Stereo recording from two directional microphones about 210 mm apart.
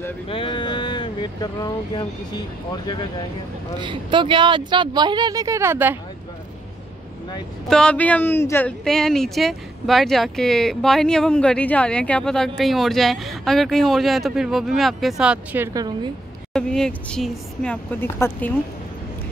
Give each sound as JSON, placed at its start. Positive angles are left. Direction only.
{"t": 0.3, "sound": "speech", "side_deg": 25}
{"t": 3.8, "sound": "speech", "side_deg": -20}
{"t": 7.6, "sound": "speech", "side_deg": 5}
{"t": 16.5, "sound": "speech", "side_deg": 5}